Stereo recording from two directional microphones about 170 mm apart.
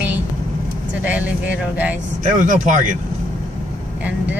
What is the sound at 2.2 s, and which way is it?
Speech, 50° right (ahead or behind).